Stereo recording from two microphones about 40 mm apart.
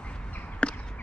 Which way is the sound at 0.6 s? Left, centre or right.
Left.